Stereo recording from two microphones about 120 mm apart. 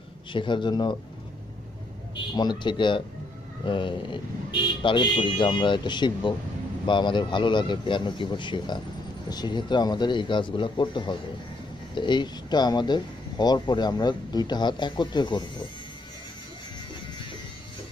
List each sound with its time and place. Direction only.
0.3 s speech: 40° left (ahead or behind)
2.3 s speech: 40° left (ahead or behind)